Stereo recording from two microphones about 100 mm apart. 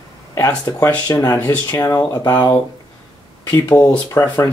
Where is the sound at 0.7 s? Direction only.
30° left (ahead or behind).